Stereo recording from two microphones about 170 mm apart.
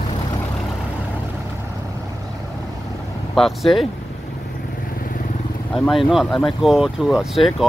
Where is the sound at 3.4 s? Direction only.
Centre (ahead or behind).